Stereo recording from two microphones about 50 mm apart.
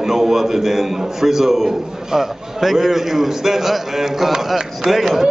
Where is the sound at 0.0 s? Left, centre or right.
Centre.